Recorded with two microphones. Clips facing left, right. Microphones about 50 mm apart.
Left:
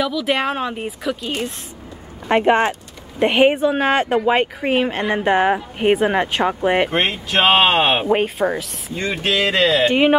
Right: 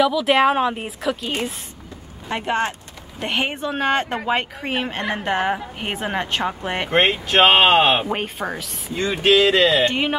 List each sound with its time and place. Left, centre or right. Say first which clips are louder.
0.0 s speech: right 4 dB; centre
2.2 s speech: left 7 dB; left
3.2 s speech: left 9 dB; centre
6.9 s speech: right 2 dB; centre
7.2 s speech: even; centre
7.8 s speech: left 2 dB; centre
8.4 s speech: left 7 dB; centre
9.8 s speech: left 6 dB; centre